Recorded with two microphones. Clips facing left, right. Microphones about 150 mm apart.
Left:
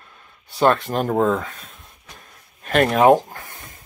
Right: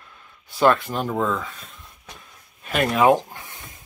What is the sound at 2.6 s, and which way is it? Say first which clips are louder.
Speech: left 3 dB; 40° left (ahead or behind).